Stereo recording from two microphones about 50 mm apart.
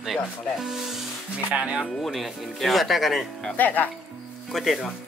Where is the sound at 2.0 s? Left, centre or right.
Centre.